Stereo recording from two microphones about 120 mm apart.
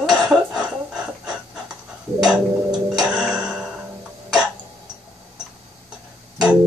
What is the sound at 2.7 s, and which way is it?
Tick-tock, 35° right (ahead or behind).